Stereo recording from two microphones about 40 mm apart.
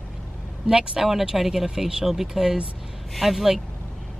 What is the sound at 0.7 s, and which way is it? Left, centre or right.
Speech, centre.